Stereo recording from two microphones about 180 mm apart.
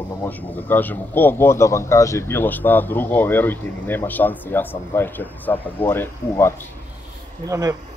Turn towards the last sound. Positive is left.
turn(degrees=-20)  # may be behind; listen again after turning